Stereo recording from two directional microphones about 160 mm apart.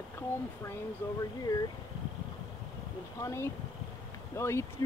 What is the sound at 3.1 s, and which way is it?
Speech, 20° left (ahead or behind).